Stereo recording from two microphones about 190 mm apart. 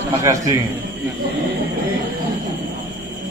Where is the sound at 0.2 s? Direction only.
15° right (ahead or behind).